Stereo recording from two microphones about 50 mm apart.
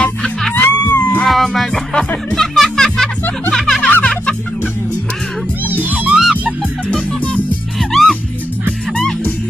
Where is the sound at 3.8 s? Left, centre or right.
Left.